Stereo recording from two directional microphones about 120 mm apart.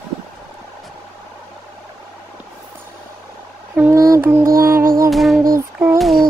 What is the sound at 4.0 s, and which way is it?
Music, 25° right (ahead or behind).